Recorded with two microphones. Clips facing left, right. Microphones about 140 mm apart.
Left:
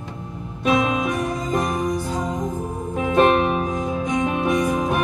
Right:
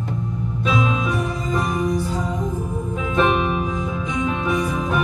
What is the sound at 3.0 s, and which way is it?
Music, 45° left (ahead or behind).